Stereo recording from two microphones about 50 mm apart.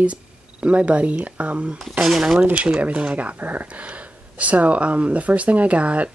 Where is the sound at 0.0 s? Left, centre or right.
Right.